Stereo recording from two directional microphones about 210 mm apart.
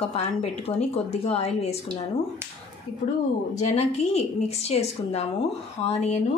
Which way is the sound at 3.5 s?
30° left (ahead or behind).